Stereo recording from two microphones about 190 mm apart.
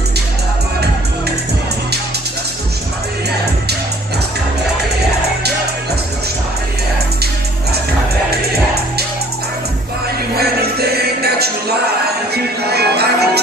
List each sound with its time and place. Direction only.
10.3 s music: 55° right (ahead or behind)
12.6 s music: 60° right (ahead or behind)